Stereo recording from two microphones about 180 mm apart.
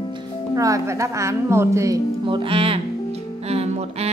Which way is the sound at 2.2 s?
30° right (ahead or behind).